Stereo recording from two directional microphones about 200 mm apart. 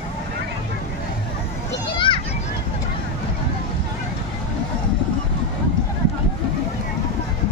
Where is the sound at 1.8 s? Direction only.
25° left (ahead or behind).